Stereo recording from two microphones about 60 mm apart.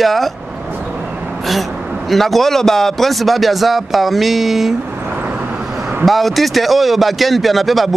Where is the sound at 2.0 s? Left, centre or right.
Centre.